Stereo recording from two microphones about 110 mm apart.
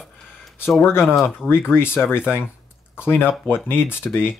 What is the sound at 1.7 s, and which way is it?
Speech, 20° left (ahead or behind).